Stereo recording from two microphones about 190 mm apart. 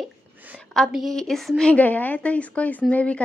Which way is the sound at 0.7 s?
Centre (ahead or behind).